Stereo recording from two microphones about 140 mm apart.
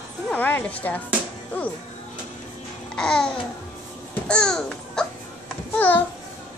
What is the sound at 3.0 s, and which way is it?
A child's voice, 5° left (ahead or behind).